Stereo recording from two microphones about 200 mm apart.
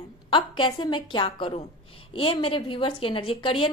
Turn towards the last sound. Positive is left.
turn(degrees=25)  # may be behind; listen again after turning